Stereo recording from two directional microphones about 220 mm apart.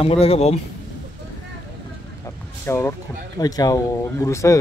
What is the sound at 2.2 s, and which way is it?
Vehicle, 10° left (ahead or behind).